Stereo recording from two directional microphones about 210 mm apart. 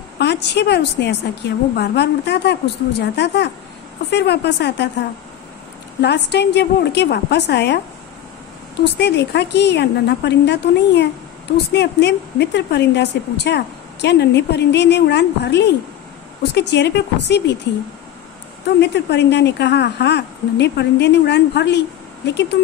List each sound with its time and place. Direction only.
0.2 s speech: 55° left (ahead or behind)
5.9 s speech: 55° left (ahead or behind)
8.9 s speech: 55° left (ahead or behind)
18.8 s speech: 55° left (ahead or behind)